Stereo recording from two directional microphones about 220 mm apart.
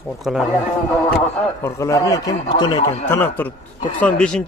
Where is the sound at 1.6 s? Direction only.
15° left (ahead or behind).